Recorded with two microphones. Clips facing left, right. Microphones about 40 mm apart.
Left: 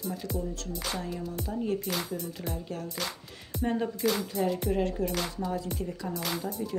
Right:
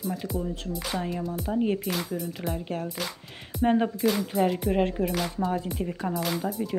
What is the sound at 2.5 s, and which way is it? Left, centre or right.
Speech, right.